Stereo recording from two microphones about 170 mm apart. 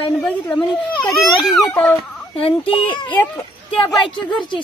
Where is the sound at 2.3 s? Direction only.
30° left (ahead or behind).